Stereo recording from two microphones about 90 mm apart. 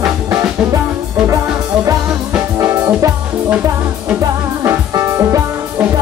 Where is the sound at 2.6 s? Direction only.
35° right (ahead or behind).